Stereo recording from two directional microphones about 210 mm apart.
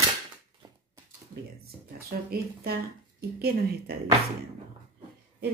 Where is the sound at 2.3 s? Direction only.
45° right (ahead or behind).